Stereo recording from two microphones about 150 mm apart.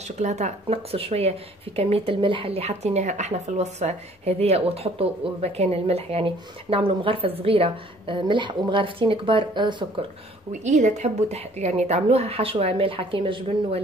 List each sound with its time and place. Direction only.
0.2 s speech: 50° right (ahead or behind); by 9.8 s 30° right (ahead or behind)
10.6 s speech: 50° right (ahead or behind); by 13.7 s 35° right (ahead or behind)